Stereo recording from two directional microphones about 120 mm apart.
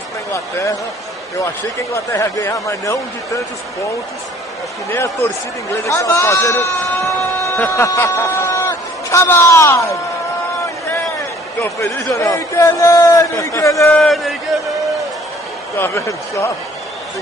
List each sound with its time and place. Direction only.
2.1 s speech: 25° left (ahead or behind)
4.9 s speech: 20° left (ahead or behind)
7.1 s printer: 25° left (ahead or behind)
7.7 s speech: 25° left (ahead or behind)
11.8 s speech: 25° left (ahead or behind)
13.9 s a man's voice: centre (ahead or behind)
14.5 s a sound: centre (ahead or behind)
15.8 s speech: 25° left (ahead or behind)